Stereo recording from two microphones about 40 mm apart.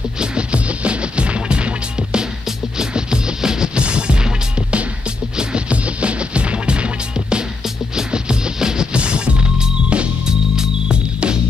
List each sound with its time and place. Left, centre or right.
0.2 s music: right